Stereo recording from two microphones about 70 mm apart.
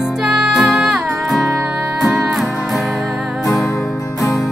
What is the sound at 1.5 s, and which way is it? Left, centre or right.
Music, centre.